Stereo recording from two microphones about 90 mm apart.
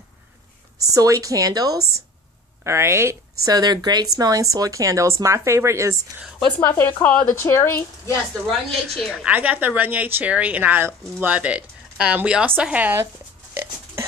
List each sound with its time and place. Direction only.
0.9 s speech: 40° right (ahead or behind)
2.6 s a woman's voice: 30° right (ahead or behind)
3.5 s speech: 50° right (ahead or behind); by 5.9 s 35° right (ahead or behind)
6.6 s speech: 25° left (ahead or behind)
7.3 s speech: 25° left (ahead or behind)
8.5 s a woman's voice: 5° left (ahead or behind)
9.1 s a woman's voice: 15° right (ahead or behind)